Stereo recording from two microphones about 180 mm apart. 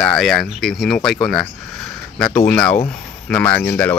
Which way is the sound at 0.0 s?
5° left (ahead or behind).